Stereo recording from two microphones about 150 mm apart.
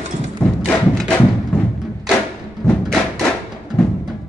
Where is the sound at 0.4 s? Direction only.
15° left (ahead or behind).